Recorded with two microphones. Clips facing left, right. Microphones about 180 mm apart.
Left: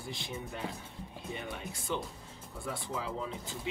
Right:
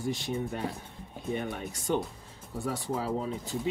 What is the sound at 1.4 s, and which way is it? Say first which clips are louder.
Speech: right 6 dB; 50° right (ahead or behind).